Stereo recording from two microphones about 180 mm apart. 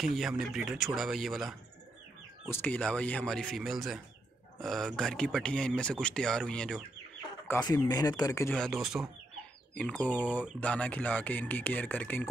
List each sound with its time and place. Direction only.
0.0 s speech: centre (ahead or behind)
2.4 s speech: 10° left (ahead or behind)
7.6 s speech: 20° left (ahead or behind)
8.5 s speech: centre (ahead or behind)